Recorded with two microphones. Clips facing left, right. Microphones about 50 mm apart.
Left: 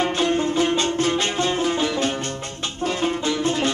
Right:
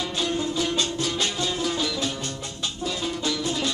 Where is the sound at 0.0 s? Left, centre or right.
Left.